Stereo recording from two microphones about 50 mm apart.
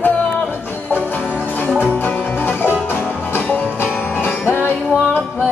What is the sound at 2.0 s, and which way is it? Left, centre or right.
Music, left.